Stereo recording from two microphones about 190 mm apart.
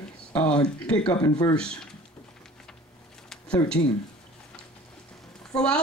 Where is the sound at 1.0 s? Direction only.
20° left (ahead or behind).